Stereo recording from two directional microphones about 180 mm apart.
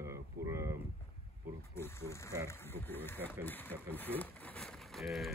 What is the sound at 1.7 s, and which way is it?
Speech, 15° left (ahead or behind).